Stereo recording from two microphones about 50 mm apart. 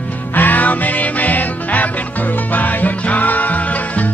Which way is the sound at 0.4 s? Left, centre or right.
Left.